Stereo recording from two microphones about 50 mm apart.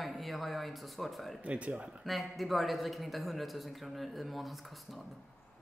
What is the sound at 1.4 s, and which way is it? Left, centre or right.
Speech, right.